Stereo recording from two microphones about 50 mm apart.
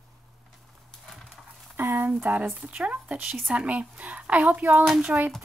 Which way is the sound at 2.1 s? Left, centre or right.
Right.